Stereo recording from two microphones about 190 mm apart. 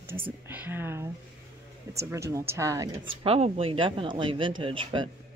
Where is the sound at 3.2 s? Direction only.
30° right (ahead or behind).